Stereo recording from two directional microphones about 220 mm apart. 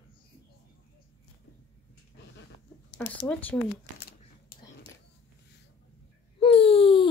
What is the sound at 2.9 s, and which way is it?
Speech, 55° left (ahead or behind).